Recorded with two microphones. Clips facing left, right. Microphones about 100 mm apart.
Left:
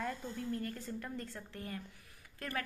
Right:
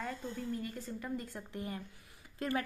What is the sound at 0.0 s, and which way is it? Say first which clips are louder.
A woman's voice: even; centre (ahead or behind).